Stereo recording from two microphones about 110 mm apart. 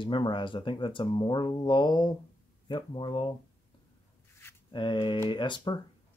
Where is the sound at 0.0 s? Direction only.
45° left (ahead or behind).